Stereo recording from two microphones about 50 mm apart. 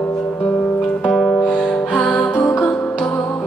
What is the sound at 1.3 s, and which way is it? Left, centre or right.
Music, left.